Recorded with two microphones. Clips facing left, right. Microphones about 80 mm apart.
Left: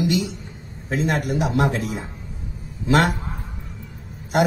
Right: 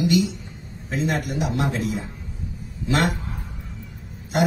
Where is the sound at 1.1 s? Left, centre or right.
Left.